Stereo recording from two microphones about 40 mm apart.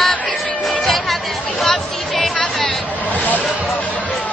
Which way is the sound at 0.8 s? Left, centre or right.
Centre.